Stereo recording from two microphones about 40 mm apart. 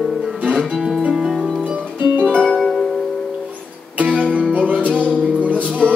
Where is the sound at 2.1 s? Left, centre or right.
Right.